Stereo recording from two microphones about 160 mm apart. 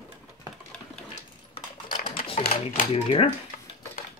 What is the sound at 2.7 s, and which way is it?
Speech, 40° left (ahead or behind).